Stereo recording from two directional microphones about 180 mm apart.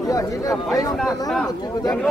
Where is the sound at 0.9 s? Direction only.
Centre (ahead or behind).